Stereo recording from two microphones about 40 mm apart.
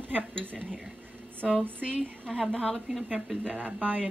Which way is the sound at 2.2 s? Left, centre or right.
Centre.